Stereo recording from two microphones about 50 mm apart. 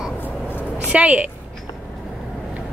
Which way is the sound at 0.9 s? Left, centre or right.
Right.